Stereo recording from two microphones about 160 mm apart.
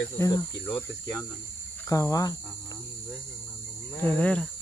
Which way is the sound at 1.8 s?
20° left (ahead or behind).